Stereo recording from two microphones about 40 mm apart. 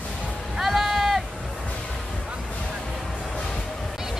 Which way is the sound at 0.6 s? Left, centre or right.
Centre.